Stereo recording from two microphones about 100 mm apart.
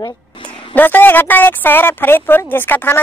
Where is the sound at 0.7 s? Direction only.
20° left (ahead or behind).